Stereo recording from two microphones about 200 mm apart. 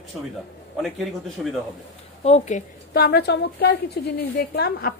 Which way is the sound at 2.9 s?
50° left (ahead or behind).